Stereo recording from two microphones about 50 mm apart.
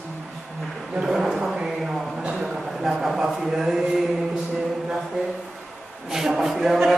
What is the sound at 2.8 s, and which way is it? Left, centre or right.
Speech, centre.